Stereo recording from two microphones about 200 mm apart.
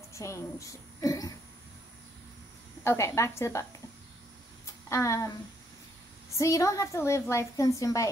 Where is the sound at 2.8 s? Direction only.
15° left (ahead or behind).